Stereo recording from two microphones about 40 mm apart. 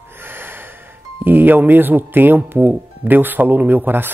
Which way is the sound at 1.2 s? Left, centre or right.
Right.